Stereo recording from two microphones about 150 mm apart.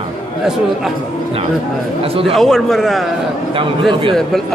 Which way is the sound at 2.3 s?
Centre (ahead or behind).